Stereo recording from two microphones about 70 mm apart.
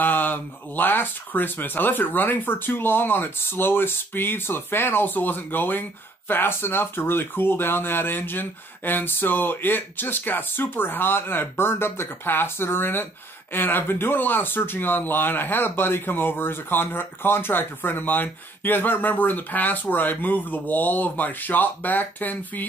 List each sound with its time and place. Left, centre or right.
0.0 s speech: left